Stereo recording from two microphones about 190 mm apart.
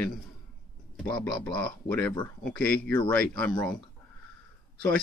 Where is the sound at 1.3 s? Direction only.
5° left (ahead or behind).